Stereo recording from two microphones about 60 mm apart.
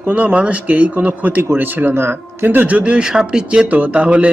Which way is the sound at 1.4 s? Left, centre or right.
Right.